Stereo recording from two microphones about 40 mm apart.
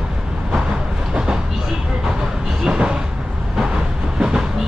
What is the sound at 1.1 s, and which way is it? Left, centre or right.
Train, centre.